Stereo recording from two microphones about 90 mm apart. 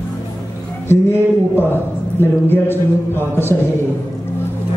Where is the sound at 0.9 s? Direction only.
30° left (ahead or behind).